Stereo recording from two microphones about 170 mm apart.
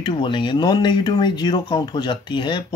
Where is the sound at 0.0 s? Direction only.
30° left (ahead or behind).